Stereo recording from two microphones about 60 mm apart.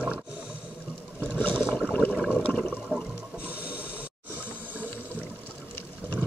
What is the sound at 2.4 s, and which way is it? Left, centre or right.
Toilet flush, left.